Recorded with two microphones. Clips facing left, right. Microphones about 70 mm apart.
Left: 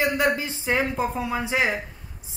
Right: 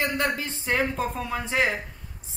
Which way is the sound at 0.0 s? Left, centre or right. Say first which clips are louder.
Left 4 dB; centre.